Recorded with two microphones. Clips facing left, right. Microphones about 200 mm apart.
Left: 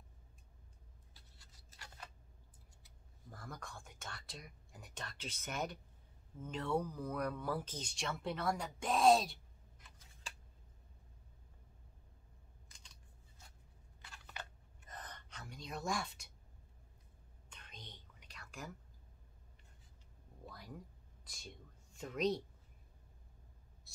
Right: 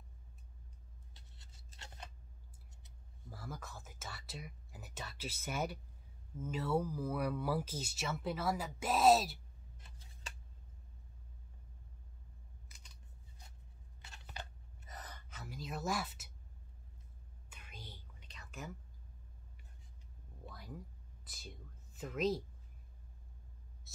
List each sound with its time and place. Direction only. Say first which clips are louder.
1.1 s a sound: right 2 dB; 25° right (ahead or behind)
3.3 s speech: right 2 dB; 5° right (ahead or behind)
9.8 s scissors: right 2 dB; 30° right (ahead or behind)
12.6 s scissors: right 2 dB; 5° right (ahead or behind)
14.0 s a sound: right 1 dB; 25° right (ahead or behind)
14.9 s gasp: even; 10° right (ahead or behind)
17.5 s whispering: right 2 dB; 5° right (ahead or behind)
18.5 s speech: right 2 dB; centre (ahead or behind)
20.4 s a sound: right 1 dB; centre (ahead or behind)